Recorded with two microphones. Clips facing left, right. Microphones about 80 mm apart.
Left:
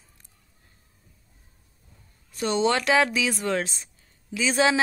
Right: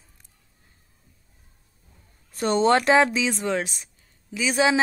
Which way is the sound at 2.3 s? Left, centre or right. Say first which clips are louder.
Right 4 dB; right.